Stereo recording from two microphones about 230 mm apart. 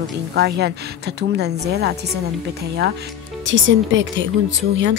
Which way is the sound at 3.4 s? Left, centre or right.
Right.